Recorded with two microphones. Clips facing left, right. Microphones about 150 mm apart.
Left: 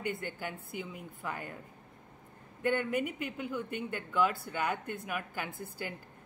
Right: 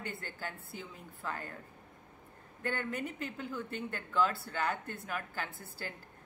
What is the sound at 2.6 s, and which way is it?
Speech, 15° left (ahead or behind).